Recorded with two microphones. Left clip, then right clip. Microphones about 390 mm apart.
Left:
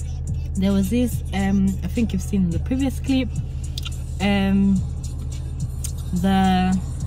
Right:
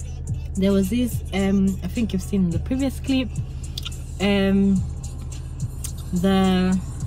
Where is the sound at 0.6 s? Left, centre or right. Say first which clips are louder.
Right 1 dB; centre.